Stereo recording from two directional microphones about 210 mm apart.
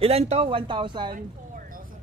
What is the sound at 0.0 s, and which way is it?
Speech, 30° right (ahead or behind).